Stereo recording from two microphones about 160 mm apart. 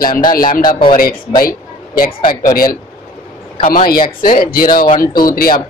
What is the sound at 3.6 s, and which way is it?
A man's voice, 60° left (ahead or behind).